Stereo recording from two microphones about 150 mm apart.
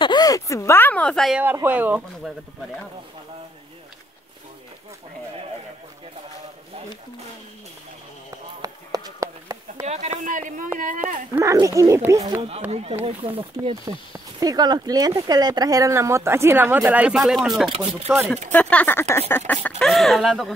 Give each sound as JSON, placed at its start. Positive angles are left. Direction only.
{"t": 0.0, "sound": "speech", "side_deg": 30}
{"t": 1.4, "sound": "speech", "side_deg": -10}
{"t": 8.6, "sound": "clip-clop", "side_deg": -25}
{"t": 9.8, "sound": "speech", "side_deg": -45}
{"t": 11.5, "sound": "speech", "side_deg": -20}
{"t": 12.3, "sound": "speech", "side_deg": -40}
{"t": 13.8, "sound": "speech", "side_deg": -25}
{"t": 17.6, "sound": "speech", "side_deg": -40}
{"t": 18.5, "sound": "speech", "side_deg": 10}